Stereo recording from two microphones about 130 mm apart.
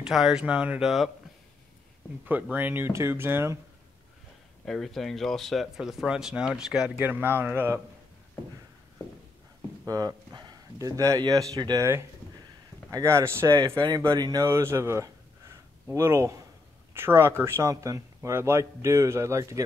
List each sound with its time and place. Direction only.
0.0 s speech: 5° right (ahead or behind)
2.5 s speech: 15° right (ahead or behind)
4.6 s speech: 5° left (ahead or behind)
7.0 s speech: 15° right (ahead or behind)
9.8 s speech: 30° right (ahead or behind)
14.1 s speech: 30° right (ahead or behind)
14.4 s speech: 20° right (ahead or behind)